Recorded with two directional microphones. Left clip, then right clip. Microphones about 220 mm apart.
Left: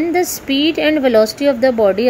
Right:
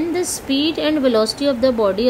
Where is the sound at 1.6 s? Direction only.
10° left (ahead or behind).